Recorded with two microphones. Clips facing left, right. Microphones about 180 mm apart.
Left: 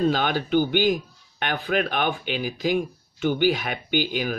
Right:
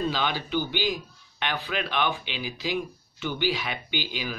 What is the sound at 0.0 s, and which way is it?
Speech, 50° left (ahead or behind).